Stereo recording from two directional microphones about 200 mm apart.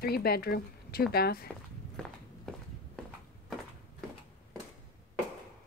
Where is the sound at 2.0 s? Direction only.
5° left (ahead or behind).